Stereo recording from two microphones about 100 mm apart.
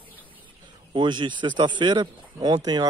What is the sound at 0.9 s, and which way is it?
Speech, 50° right (ahead or behind).